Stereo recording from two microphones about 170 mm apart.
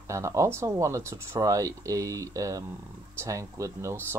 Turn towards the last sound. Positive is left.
turn(degrees=-15)  # may be behind; listen again after turning